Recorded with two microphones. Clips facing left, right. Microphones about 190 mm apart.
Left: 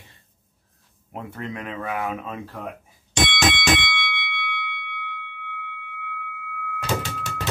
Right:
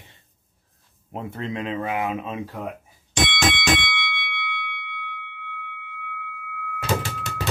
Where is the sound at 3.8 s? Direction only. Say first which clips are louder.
Left 1 dB; 85° left.